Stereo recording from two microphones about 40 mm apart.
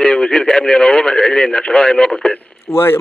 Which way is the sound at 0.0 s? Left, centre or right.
Centre.